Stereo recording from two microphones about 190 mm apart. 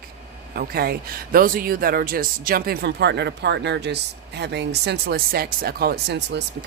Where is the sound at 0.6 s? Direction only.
55° right (ahead or behind).